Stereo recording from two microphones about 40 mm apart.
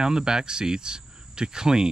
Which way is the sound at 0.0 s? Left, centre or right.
Centre.